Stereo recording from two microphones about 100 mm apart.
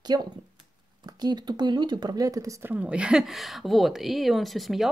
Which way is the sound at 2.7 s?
10° right (ahead or behind).